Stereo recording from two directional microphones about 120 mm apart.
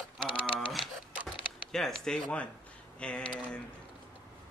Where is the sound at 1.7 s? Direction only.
5° left (ahead or behind).